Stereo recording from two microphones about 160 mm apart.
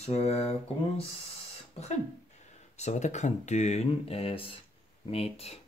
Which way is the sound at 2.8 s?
45° left (ahead or behind).